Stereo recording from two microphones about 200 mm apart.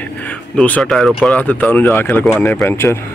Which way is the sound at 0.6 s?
5° left (ahead or behind).